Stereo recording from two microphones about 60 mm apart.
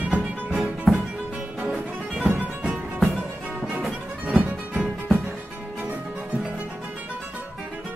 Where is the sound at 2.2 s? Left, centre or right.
Right.